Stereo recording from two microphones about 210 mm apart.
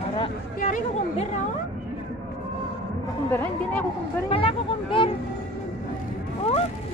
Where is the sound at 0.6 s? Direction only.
40° left (ahead or behind).